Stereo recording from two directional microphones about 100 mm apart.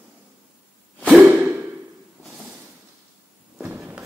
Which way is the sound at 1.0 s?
15° right (ahead or behind).